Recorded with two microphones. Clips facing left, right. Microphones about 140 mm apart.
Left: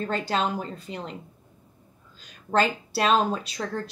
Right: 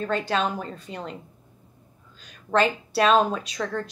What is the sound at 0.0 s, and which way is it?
Speech, 30° left (ahead or behind).